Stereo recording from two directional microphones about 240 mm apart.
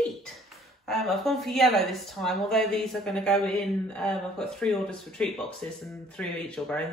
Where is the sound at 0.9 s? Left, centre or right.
Centre.